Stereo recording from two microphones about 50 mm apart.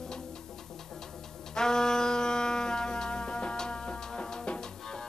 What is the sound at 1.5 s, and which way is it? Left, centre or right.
Music, centre.